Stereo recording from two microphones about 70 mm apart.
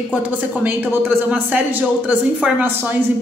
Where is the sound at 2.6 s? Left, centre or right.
Right.